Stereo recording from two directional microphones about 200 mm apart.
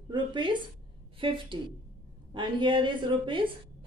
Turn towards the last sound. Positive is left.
turn(degrees=-25)  # may be behind; listen again after turning